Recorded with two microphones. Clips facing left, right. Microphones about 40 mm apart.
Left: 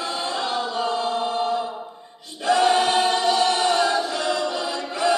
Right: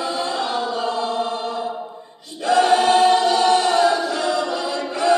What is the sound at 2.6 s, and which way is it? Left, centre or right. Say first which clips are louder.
Choir: right 5 dB; centre.